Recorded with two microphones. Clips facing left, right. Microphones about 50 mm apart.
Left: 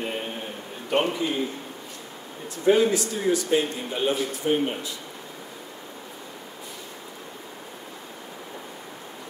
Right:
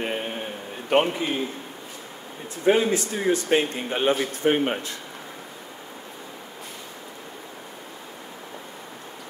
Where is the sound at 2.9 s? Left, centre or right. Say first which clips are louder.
Right 1 dB; right.